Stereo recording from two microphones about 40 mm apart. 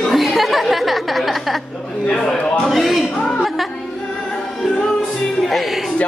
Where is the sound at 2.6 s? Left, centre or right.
Centre.